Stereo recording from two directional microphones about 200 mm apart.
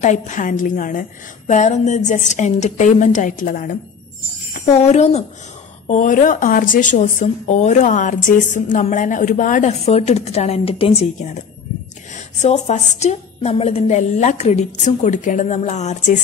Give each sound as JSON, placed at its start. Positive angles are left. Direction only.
{"t": 0.0, "sound": "a woman's voice", "side_deg": 35}